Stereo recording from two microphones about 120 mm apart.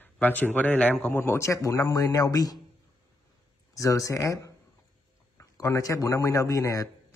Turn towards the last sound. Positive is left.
turn(degrees=25)  # may be behind; listen again after turning